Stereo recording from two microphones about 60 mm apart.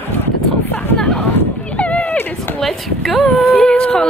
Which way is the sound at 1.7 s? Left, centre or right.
Left.